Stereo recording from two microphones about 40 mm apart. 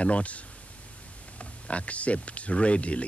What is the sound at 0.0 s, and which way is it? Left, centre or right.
Speech, left.